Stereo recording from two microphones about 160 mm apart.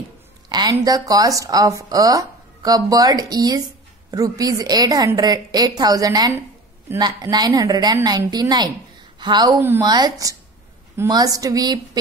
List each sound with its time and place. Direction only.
0.5 s a woman's voice: 25° right (ahead or behind)
9.6 s speech: 15° right (ahead or behind)
9.8 s a woman's voice: 25° right (ahead or behind)